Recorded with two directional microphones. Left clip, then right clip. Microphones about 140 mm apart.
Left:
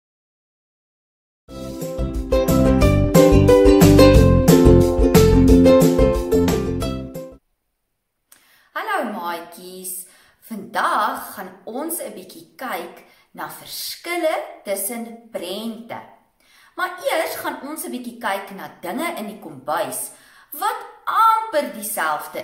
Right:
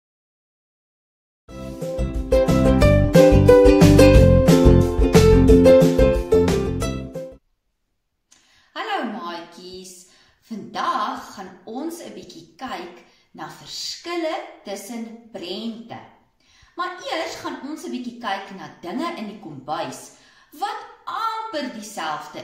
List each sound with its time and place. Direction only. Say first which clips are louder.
1.4 s music: left 1 dB; centre (ahead or behind)
8.7 s a sound: left 3 dB; 15° left (ahead or behind)
10.7 s a woman's voice: left 4 dB; 10° left (ahead or behind)
13.7 s a woman's voice: right 1 dB; 50° left (ahead or behind)
14.0 s a woman's voice: left 6 dB; 15° left (ahead or behind)
18.3 s a woman's voice: left 2 dB; 15° left (ahead or behind)